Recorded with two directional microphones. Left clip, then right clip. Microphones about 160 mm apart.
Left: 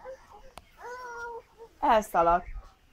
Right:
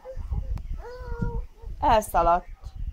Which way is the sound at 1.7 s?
60° right (ahead or behind).